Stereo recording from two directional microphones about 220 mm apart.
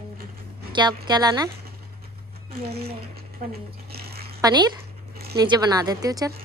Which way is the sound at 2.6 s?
45° right (ahead or behind).